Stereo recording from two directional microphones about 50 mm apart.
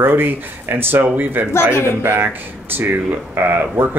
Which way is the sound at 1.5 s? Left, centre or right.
Left.